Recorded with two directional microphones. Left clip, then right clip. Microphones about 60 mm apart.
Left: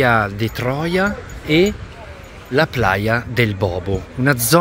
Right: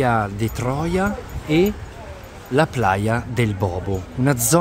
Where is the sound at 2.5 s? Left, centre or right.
Centre.